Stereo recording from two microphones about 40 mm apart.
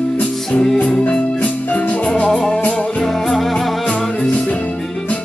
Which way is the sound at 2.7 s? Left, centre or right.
Left.